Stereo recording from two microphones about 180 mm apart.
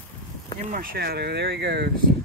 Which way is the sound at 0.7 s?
60° right (ahead or behind).